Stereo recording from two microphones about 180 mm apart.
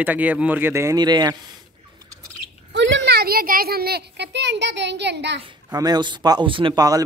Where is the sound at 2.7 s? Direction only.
85° right.